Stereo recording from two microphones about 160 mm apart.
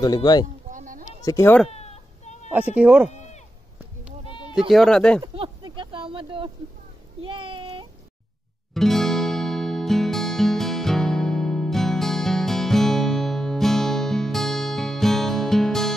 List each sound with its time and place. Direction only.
0.0 s speech: 25° left (ahead or behind)
0.7 s a sound: 55° right (ahead or behind)
1.2 s speech: 20° left (ahead or behind)
1.7 s baby cry: 45° left (ahead or behind)
2.7 s speech: 10° right (ahead or behind)
4.6 s speech: centre (ahead or behind)
5.2 s a sound: 30° right (ahead or behind)
8.7 s music: centre (ahead or behind)